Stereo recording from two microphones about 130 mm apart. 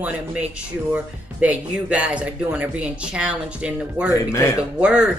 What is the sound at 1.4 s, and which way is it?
A woman's voice, 10° right (ahead or behind).